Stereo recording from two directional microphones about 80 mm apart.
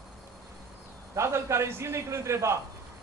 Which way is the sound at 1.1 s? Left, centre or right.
Right.